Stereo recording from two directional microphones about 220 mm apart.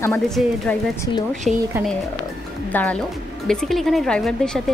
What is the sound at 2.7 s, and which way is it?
A woman's voice, 5° left (ahead or behind).